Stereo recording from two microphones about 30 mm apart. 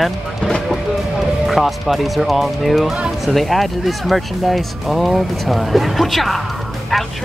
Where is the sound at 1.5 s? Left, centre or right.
Centre.